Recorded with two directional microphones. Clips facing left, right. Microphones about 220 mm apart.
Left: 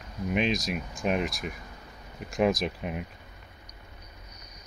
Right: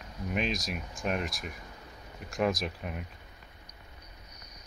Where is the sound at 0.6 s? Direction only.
5° left (ahead or behind).